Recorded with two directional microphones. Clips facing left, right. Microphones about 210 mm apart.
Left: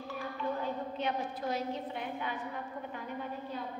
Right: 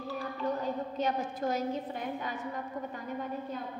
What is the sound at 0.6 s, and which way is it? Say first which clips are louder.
A woman's voice: right 3 dB; 40° right (ahead or behind).